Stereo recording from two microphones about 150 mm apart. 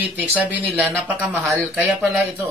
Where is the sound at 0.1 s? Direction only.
10° right (ahead or behind).